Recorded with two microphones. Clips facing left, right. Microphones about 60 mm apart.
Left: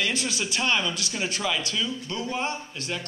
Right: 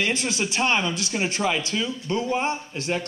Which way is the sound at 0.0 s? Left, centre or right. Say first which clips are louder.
Right 3 dB; right.